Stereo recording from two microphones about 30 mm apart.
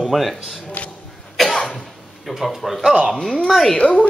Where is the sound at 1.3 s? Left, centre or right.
Centre.